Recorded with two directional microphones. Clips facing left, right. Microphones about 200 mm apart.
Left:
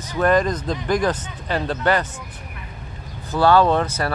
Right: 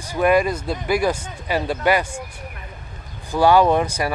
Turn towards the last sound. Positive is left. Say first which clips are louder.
# right 1 dB
turn(degrees=-15)  # may be behind; listen again after turning